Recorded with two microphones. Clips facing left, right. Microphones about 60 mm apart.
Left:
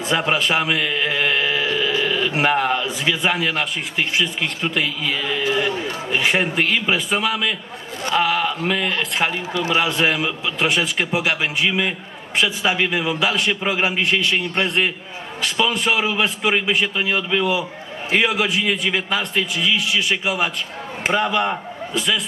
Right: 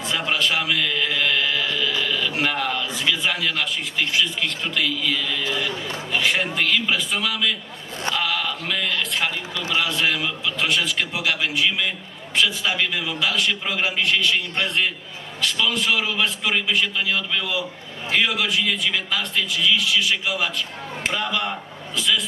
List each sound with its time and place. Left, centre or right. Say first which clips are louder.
0.1 s a man's voice: left 4 dB; left
21.9 s speech: left 1 dB; centre